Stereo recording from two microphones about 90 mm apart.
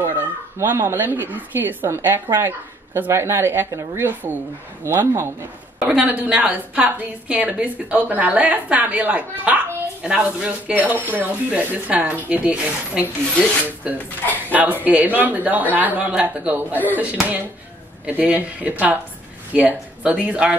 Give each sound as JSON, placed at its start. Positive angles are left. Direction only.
{"t": 0.6, "sound": "a woman's voice", "side_deg": -25}
{"t": 5.8, "sound": "a woman's voice", "side_deg": -15}
{"t": 13.3, "sound": "speech", "side_deg": 10}
{"t": 14.5, "sound": "a woman's voice", "side_deg": -20}